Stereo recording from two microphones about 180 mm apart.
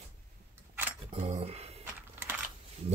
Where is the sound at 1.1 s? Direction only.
35° right (ahead or behind).